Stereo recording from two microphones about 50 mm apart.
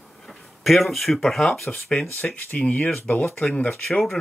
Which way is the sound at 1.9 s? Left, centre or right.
Centre.